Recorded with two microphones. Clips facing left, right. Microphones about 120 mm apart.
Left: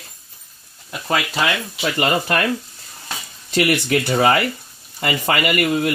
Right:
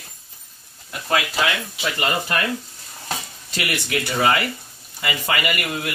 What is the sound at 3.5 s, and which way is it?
Speech, 40° left (ahead or behind).